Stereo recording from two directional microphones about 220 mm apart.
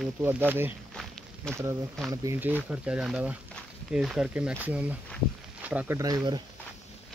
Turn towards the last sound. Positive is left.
turn(degrees=-20)  # may be behind; listen again after turning